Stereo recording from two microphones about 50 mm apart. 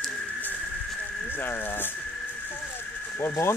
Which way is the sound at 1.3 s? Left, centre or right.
Left.